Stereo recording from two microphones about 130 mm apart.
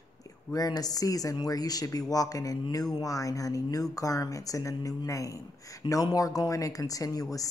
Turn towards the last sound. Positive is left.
turn(degrees=25)  # may be behind; listen again after turning